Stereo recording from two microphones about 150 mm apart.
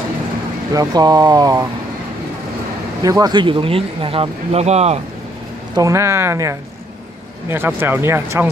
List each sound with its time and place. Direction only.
0.7 s speech: 25° right (ahead or behind)
3.0 s speech: 25° right (ahead or behind); by 5.0 s 45° right (ahead or behind)
5.8 s speech: 20° right (ahead or behind)